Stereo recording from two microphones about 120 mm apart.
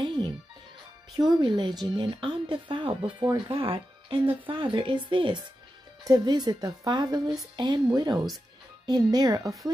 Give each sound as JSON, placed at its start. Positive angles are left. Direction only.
{"t": 0.0, "sound": "music", "side_deg": -40}
{"t": 1.1, "sound": "a woman's voice", "side_deg": -35}